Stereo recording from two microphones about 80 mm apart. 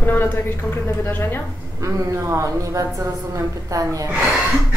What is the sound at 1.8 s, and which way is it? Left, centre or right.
Speech, right.